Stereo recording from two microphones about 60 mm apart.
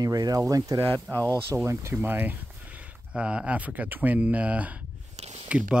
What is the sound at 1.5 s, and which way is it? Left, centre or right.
Speech, right.